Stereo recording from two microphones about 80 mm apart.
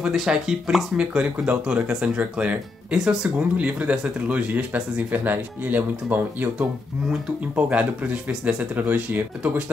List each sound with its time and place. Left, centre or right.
0.0 s speech: centre